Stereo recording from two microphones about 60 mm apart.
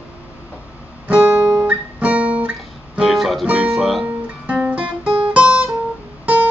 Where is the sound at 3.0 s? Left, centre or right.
Centre.